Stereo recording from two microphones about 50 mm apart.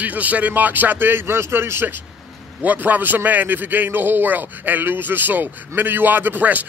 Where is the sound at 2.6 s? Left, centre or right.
Right.